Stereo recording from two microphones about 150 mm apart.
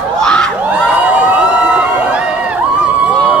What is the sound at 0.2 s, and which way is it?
Crowd, 5° left (ahead or behind).